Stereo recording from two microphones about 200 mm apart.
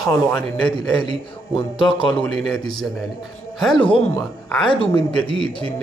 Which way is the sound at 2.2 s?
5° left (ahead or behind).